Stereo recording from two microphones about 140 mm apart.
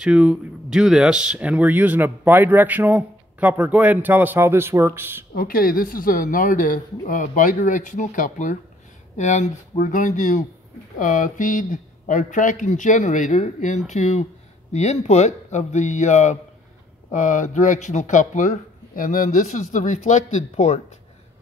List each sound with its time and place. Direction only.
0.0 s speech: 5° right (ahead or behind)
5.3 s speech: 90° left; by 20.8 s 55° left (ahead or behind)